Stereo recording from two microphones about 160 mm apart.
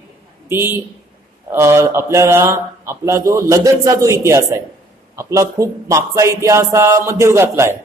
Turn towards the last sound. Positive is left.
turn(degrees=-15)  # may be behind; listen again after turning